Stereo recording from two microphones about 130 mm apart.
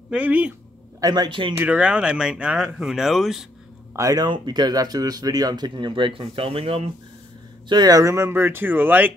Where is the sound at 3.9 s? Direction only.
25° right (ahead or behind); by 6.9 s 50° right (ahead or behind).